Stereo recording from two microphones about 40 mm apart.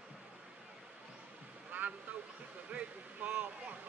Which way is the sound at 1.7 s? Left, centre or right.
Right.